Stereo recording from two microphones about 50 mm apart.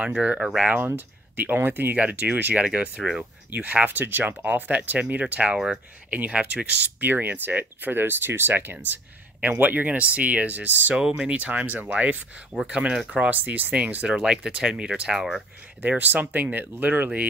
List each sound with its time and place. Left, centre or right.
0.7 s speech: right
2.0 s speech: right
2.6 s speech: right
7.1 s speech: right
8.8 s a sound: right
9.6 s speech: right
11.0 s speech: centre
11.3 s speech: right
12.6 s speech: centre
13.1 s speech: right
13.7 s speech: right
15.1 s speech: centre
15.8 s speech: right